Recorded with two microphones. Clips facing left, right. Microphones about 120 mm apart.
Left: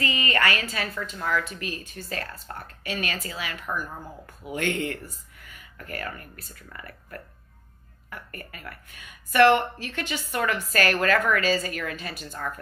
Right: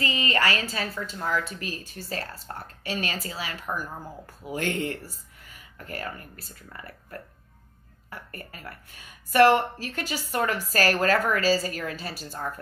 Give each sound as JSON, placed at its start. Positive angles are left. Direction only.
{"t": 0.3, "sound": "a woman's voice", "side_deg": -30}